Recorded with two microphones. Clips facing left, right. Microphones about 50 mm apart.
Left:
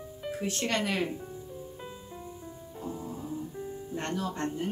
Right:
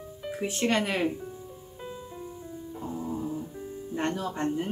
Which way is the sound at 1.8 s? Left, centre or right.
Centre.